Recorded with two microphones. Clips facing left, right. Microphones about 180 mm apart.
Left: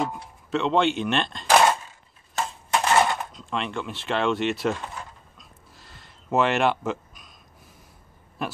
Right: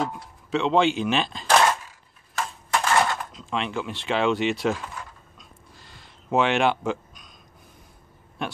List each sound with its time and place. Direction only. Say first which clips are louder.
0.5 s speech: right 1 dB; centre (ahead or behind)
1.5 s a sound: left 1 dB; 15° left (ahead or behind)
2.7 s crushing: left 1 dB; 20° left (ahead or behind)
3.3 s speech: right 1 dB; centre (ahead or behind)
5.4 s a sound: right 1 dB; centre (ahead or behind)
8.4 s speech: even; 5° left (ahead or behind)